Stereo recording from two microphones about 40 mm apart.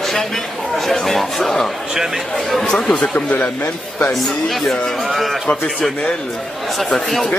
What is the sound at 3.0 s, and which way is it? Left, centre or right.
Speech, left.